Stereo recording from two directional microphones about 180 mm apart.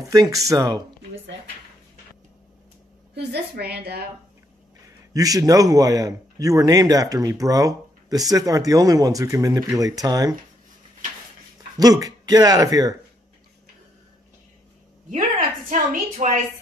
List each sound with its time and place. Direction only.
0.0 s a man's voice: 20° right (ahead or behind)
3.2 s a woman's voice: 65° right (ahead or behind)
4.8 s a man's voice: 20° right (ahead or behind)
11.8 s a man's voice: 20° right (ahead or behind)
15.0 s a woman's voice: 45° right (ahead or behind)